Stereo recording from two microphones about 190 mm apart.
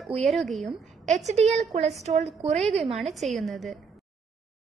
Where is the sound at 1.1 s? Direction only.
35° right (ahead or behind).